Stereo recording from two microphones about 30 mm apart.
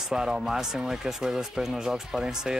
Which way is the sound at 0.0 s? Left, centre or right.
Centre.